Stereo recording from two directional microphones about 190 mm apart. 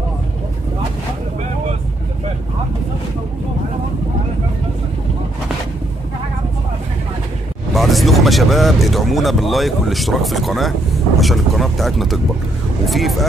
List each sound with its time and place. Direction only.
7.7 s speech: centre (ahead or behind)